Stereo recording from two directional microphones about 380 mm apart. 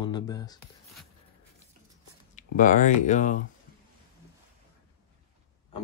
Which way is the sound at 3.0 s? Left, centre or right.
Centre.